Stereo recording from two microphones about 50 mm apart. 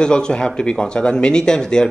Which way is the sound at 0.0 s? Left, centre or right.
Centre.